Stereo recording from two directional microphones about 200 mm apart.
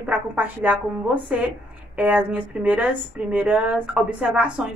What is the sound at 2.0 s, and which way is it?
Speech, 5° right (ahead or behind).